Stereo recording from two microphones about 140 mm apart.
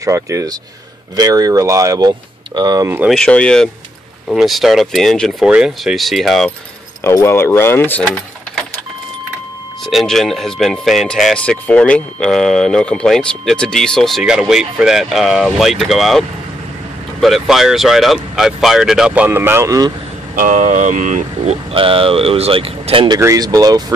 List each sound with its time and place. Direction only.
0.0 s speech: 20° right (ahead or behind)
3.1 s speech: 5° left (ahead or behind)
7.0 s speech: 20° left (ahead or behind)
9.8 s speech: centre (ahead or behind); by 19.9 s 25° right (ahead or behind)
20.3 s speech: 70° right (ahead or behind)
21.7 s speech: 40° right (ahead or behind)
23.1 s speech: 25° right (ahead or behind)